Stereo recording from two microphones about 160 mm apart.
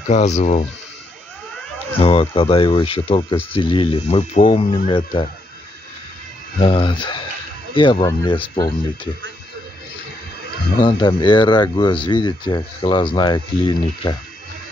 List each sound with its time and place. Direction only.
0.1 s speech: 45° left (ahead or behind)
2.0 s speech: 35° left (ahead or behind)
6.6 s speech: 30° left (ahead or behind)
10.8 s speech: 30° left (ahead or behind)